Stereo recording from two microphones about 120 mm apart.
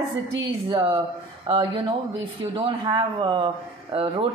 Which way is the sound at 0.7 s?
45° right (ahead or behind).